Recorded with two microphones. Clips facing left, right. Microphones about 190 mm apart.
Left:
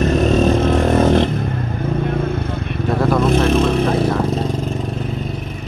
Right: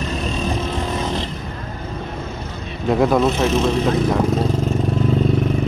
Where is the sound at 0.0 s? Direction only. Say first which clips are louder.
Left 9 dB; 50° left (ahead or behind).